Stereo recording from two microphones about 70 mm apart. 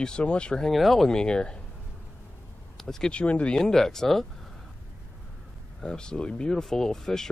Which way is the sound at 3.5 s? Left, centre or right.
Centre.